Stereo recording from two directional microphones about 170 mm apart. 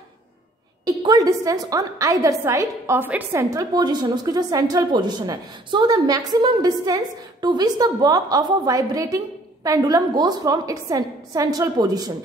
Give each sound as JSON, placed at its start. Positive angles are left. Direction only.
{"t": 0.8, "sound": "a woman's voice", "side_deg": -20}